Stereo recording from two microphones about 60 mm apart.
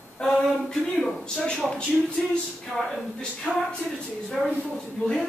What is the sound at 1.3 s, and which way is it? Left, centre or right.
Speech, centre.